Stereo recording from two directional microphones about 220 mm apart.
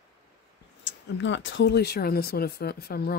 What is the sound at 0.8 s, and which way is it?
Speech, 55° left (ahead or behind).